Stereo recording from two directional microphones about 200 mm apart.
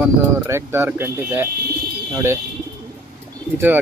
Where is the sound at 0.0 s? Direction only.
15° right (ahead or behind).